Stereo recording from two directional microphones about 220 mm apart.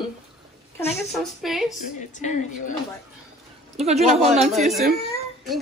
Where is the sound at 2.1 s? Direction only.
35° left (ahead or behind).